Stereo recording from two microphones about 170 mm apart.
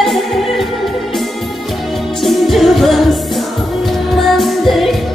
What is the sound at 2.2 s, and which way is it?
Music, centre (ahead or behind).